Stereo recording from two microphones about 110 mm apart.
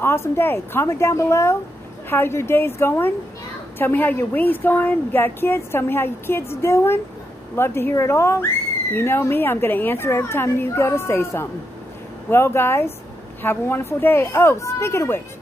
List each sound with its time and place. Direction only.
0.0 s a woman's voice: 20° left (ahead or behind)